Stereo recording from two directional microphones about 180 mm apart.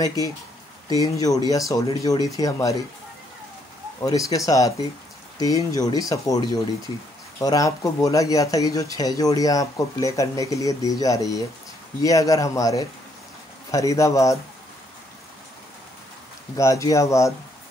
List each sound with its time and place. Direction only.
0.0 s speech: 20° left (ahead or behind)
4.0 s speech: 20° left (ahead or behind)
16.5 s speech: 15° left (ahead or behind)